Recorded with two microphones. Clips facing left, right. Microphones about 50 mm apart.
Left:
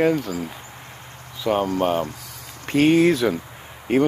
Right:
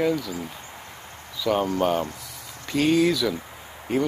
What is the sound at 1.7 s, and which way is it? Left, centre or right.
Speech, centre.